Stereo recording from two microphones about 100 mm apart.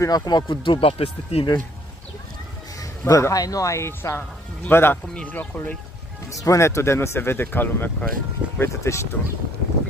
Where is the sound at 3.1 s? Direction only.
35° left (ahead or behind); by 5.8 s 15° left (ahead or behind).